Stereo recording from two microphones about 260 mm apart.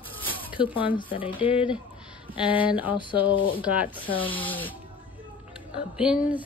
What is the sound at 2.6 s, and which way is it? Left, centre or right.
A woman's voice, centre.